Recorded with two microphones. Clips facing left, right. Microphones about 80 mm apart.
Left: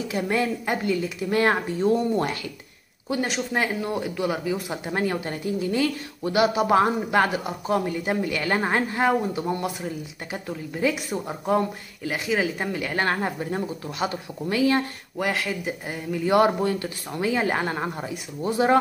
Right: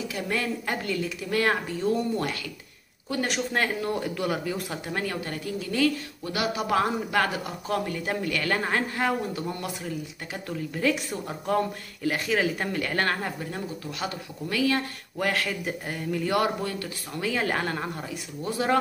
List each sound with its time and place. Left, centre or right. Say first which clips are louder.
0.1 s a woman's voice: left 7 dB; left
1.3 s a woman's voice: left 4 dB; left
3.3 s speech: right 1 dB; centre
4.8 s a woman's voice: left 6 dB; left; by 13.0 s centre
13.0 s a woman's voice: left 3 dB; left
15.1 s a woman's voice: left 1 dB; centre
16.3 s a woman's voice: left 7 dB; left